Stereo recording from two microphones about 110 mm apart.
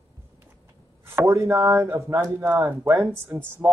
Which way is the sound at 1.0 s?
25° right (ahead or behind).